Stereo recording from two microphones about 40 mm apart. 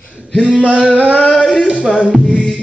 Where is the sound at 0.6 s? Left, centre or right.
Right.